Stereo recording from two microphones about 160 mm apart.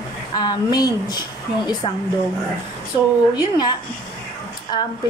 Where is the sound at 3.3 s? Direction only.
25° left (ahead or behind).